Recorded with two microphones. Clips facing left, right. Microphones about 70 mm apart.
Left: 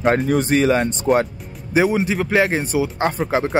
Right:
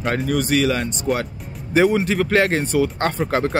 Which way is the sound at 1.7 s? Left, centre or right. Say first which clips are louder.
Right 1 dB; centre.